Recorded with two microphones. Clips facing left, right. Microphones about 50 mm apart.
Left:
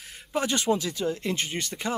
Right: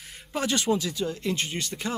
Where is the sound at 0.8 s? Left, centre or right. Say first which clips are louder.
Left 1 dB; left.